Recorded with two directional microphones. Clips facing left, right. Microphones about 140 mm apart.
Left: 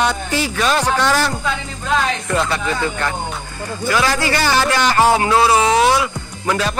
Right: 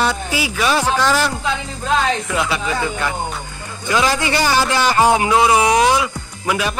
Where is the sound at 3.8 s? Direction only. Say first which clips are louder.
Even; 20° right (ahead or behind).